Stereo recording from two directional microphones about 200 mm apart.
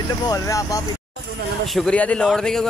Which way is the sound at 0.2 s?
20° left (ahead or behind).